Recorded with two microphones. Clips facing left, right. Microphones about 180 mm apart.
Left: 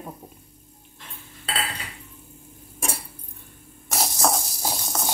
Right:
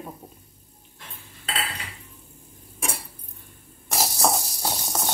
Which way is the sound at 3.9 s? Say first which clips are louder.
Even; centre (ahead or behind).